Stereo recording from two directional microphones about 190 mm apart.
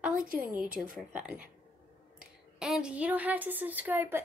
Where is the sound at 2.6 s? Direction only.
5° right (ahead or behind).